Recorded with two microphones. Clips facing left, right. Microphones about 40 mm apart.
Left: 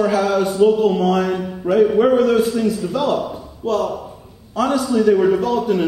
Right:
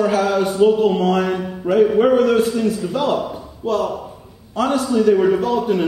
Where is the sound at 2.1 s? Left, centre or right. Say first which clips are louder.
Even; right.